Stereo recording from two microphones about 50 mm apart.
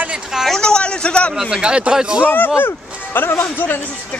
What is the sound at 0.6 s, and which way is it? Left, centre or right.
Speech, centre.